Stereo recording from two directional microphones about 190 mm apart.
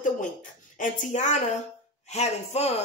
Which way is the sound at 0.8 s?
40° left (ahead or behind).